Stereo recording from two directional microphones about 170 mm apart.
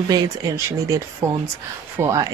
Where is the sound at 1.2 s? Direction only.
15° right (ahead or behind).